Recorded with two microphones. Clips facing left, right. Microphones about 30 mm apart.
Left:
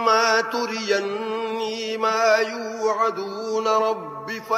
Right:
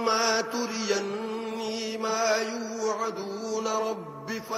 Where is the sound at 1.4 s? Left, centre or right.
Left.